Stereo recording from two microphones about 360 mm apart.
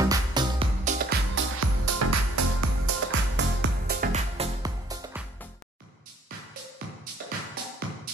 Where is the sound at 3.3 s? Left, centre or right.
Right.